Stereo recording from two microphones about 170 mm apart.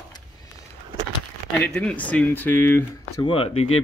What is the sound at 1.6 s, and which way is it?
Speech, 5° left (ahead or behind).